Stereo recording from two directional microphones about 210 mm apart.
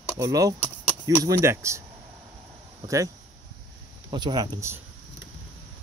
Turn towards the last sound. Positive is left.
turn(degrees=-15)  # may be behind; listen again after turning